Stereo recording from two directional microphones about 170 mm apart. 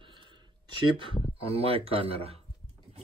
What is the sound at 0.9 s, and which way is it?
Speech, 30° right (ahead or behind).